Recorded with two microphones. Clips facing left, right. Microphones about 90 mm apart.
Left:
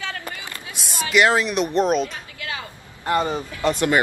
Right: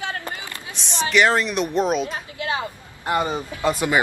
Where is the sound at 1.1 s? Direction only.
Centre (ahead or behind).